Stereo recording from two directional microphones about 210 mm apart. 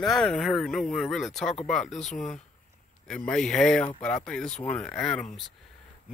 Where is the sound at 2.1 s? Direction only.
35° left (ahead or behind).